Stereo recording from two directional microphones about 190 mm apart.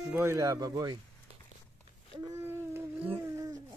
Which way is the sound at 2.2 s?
10° right (ahead or behind).